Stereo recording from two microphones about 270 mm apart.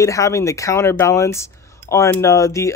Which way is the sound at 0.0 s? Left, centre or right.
Centre.